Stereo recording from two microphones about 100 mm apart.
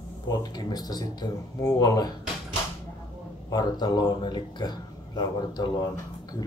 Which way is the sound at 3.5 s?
40° left (ahead or behind).